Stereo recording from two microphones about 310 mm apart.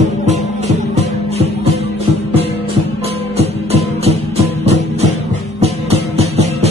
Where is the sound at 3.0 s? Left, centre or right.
Centre.